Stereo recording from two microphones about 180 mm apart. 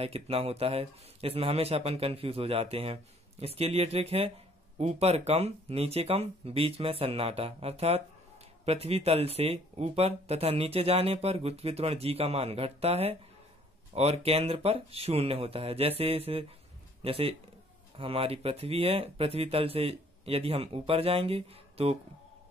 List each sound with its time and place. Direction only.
0.0 s speech: 35° right (ahead or behind)